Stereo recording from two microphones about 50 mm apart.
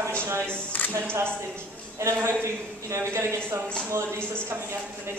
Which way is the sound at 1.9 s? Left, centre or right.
Right.